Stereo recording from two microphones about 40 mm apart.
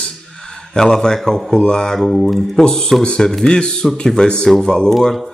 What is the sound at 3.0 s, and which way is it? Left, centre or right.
Speech, left.